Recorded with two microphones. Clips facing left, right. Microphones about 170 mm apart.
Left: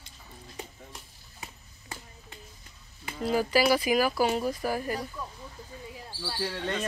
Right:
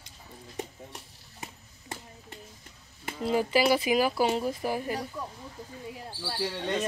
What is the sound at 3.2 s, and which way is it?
Speech, 25° right (ahead or behind).